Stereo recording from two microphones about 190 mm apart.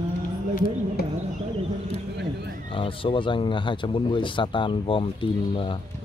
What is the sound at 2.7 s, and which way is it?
Speech, 30° left (ahead or behind).